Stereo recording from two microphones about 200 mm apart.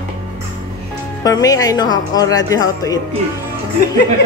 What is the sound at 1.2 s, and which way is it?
A woman's voice, 20° left (ahead or behind).